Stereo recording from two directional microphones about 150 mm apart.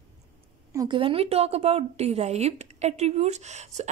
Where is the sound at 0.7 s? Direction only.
30° right (ahead or behind).